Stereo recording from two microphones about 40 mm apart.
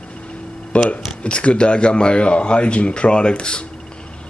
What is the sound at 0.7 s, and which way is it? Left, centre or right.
Speech, left.